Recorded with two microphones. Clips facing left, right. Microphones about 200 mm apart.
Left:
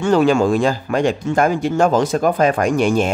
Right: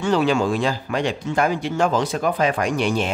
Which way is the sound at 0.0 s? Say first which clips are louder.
Left 5 dB; 45° left (ahead or behind).